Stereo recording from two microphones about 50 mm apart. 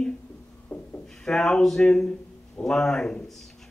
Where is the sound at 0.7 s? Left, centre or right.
Left.